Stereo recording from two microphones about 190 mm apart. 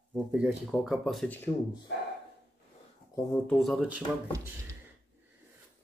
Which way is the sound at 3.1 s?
15° left (ahead or behind).